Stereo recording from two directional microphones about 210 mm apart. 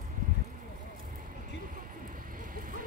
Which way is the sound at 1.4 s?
40° right (ahead or behind).